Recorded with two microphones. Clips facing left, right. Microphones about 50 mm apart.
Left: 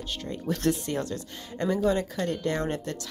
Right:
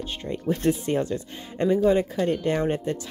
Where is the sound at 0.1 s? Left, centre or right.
Right.